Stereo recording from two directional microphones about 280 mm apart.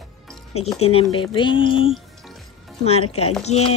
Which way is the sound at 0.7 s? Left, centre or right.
Left.